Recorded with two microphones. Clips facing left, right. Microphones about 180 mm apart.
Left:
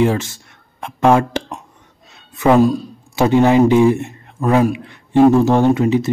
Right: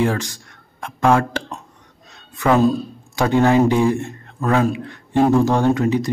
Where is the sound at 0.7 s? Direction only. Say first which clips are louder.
Left 3 dB; 20° left (ahead or behind).